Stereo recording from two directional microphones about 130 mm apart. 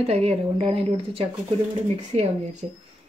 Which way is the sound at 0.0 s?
50° right (ahead or behind).